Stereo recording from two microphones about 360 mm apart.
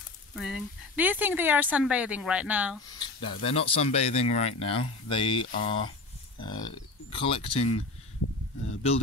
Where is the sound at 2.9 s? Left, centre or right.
Centre.